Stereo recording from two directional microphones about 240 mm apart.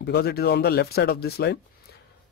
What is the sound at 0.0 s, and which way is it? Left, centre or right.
Speech, left.